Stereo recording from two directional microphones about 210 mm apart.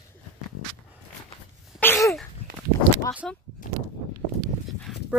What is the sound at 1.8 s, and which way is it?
Sneeze, 10° left (ahead or behind).